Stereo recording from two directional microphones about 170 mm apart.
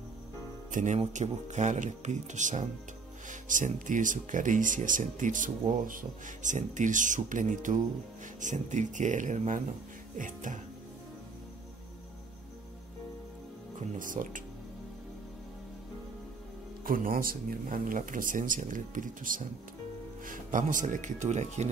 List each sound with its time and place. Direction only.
0.7 s speech: 50° right (ahead or behind)
13.9 s speech: 50° right (ahead or behind)
16.8 s speech: 55° right (ahead or behind)